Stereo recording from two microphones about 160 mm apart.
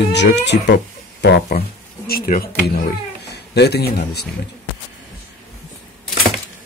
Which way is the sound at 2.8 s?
90° left.